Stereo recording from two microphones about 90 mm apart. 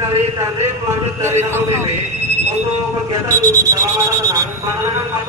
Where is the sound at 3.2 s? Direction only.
40° right (ahead or behind).